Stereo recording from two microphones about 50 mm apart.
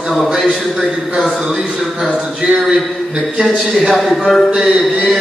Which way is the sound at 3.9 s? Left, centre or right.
Centre.